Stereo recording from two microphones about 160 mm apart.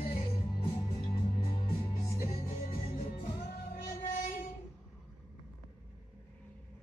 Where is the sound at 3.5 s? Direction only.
55° left (ahead or behind).